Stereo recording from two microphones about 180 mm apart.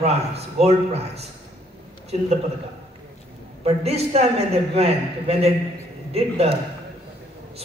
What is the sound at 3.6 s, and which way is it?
A man's voice, 35° right (ahead or behind).